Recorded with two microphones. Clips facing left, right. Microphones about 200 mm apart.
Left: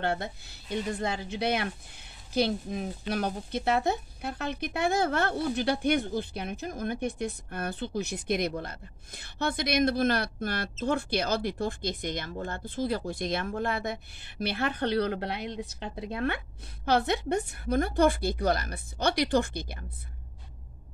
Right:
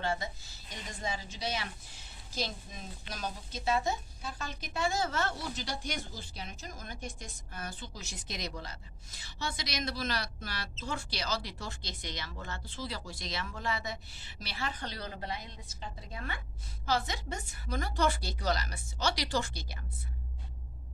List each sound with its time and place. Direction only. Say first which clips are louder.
0.0 s speech: left 4 dB; 60° left (ahead or behind)